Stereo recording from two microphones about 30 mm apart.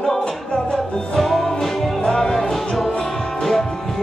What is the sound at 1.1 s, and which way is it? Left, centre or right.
Music, centre.